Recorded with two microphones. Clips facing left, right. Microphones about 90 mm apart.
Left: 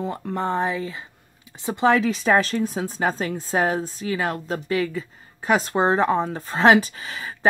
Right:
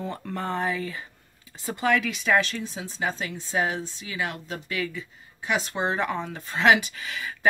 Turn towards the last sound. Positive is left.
turn(degrees=35)  # may be behind; listen again after turning